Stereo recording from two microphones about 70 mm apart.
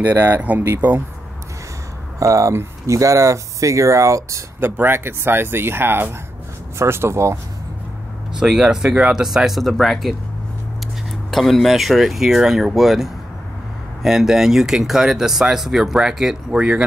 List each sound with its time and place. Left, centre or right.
0.0 s speech: right
2.1 s speech: right
4.6 s speech: right
8.4 s speech: centre
11.2 s speech: centre